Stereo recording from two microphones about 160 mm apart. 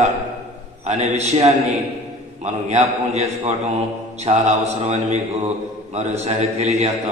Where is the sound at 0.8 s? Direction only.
45° right (ahead or behind).